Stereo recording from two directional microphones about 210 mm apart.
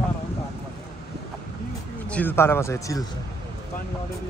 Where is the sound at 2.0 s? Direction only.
5° left (ahead or behind).